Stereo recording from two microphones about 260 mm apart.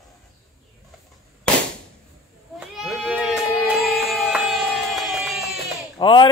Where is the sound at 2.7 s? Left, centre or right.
Centre.